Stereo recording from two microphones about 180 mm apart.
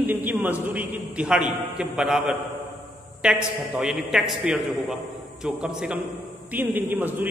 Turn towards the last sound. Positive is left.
turn(degrees=-10)  # may be behind; listen again after turning